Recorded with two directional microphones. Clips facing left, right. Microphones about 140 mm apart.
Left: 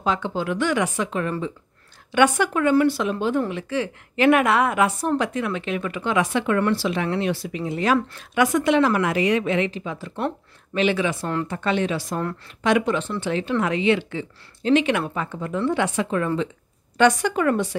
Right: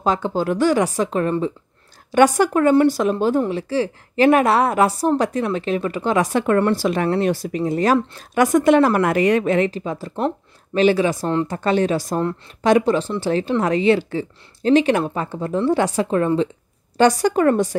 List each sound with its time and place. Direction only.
0.0 s a woman's voice: 40° right (ahead or behind)